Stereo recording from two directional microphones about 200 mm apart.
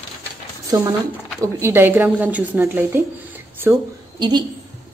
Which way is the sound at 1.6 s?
10° right (ahead or behind).